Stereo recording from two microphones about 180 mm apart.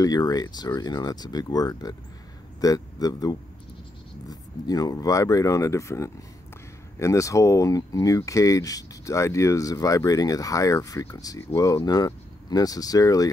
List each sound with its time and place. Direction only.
0.0 s speech: 20° left (ahead or behind)